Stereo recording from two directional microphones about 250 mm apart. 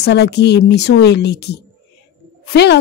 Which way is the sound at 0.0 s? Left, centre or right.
Left.